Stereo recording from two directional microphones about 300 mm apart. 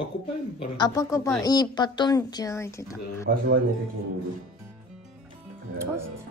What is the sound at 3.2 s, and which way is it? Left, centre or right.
Speech, right.